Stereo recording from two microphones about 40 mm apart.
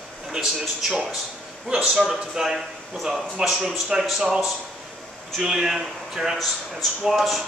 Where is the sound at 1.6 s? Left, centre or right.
Right.